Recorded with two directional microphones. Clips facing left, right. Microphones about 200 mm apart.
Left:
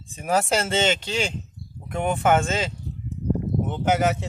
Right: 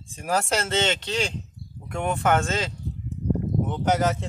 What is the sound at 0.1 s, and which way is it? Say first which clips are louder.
Speech: left 3 dB; 5° left (ahead or behind).